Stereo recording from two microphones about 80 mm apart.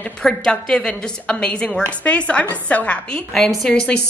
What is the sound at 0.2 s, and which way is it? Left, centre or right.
A woman's voice, centre.